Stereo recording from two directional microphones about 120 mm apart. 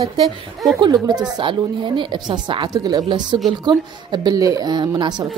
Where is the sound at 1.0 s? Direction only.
35° right (ahead or behind).